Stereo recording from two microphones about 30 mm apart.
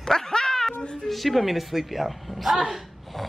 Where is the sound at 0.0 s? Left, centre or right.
Centre.